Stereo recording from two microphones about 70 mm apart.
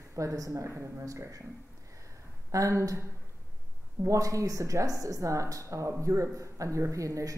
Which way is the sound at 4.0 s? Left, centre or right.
Right.